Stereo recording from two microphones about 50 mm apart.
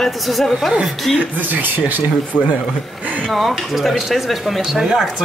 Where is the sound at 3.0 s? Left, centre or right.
Right.